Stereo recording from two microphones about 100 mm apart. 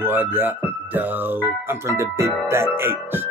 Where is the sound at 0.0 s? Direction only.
20° right (ahead or behind).